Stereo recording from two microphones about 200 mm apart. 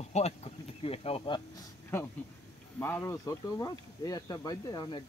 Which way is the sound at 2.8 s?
10° left (ahead or behind).